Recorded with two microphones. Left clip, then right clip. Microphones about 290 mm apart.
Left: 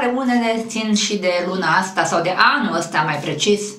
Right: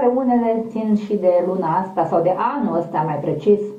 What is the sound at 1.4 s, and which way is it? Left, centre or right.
Speech, left.